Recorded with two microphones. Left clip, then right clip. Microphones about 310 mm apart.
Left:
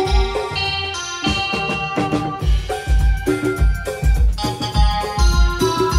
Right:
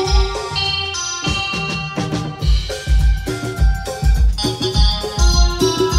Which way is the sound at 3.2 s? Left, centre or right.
Left.